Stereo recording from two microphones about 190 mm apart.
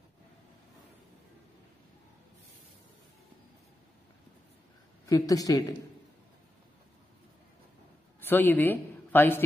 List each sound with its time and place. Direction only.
5.0 s a woman's voice: 20° left (ahead or behind)
8.2 s a woman's voice: 10° left (ahead or behind)